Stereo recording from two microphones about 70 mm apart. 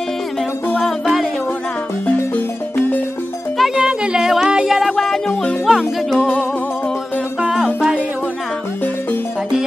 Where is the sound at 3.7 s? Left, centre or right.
Centre.